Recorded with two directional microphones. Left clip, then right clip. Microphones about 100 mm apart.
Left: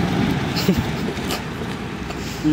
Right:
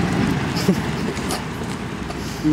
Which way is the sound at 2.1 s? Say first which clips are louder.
Even; centre (ahead or behind).